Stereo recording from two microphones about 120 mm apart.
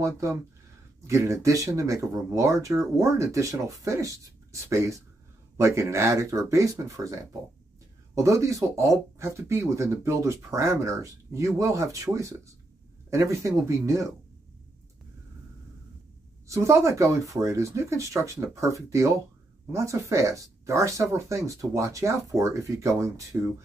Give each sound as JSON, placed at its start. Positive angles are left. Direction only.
{"t": 0.0, "sound": "speech", "side_deg": -25}
{"t": 16.4, "sound": "speech", "side_deg": -25}